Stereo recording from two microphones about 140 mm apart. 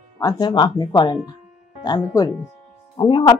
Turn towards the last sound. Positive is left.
turn(degrees=35)  # may be behind; listen again after turning